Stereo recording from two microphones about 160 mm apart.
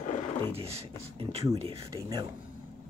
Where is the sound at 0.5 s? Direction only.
40° right (ahead or behind).